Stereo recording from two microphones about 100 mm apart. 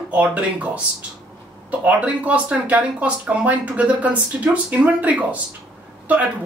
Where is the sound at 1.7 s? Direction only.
15° right (ahead or behind).